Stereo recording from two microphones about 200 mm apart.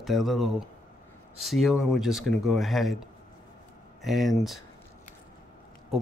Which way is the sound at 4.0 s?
Centre (ahead or behind).